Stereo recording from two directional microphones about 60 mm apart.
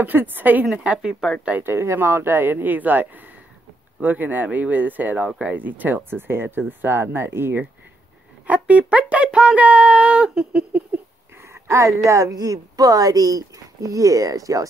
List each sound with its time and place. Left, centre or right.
0.0 s speech: right
0.8 s speech: centre
1.6 s speech: right
8.5 s speech: right
11.4 s a sound: right
12.1 s speech: right